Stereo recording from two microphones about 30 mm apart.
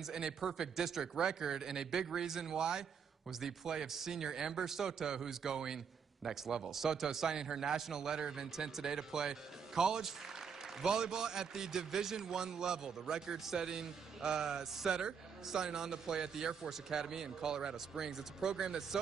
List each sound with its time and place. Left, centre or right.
0.0 s speech: centre
2.5 s a man's voice: right
3.3 s a man's voice: centre